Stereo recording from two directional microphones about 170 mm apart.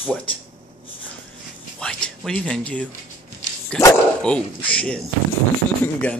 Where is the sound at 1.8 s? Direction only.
5° left (ahead or behind).